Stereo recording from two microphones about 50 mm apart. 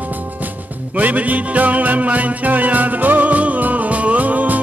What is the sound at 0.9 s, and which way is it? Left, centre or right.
Music, right.